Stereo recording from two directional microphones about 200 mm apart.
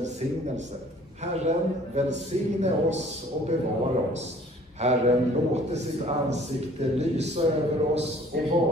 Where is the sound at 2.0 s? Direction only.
35° right (ahead or behind).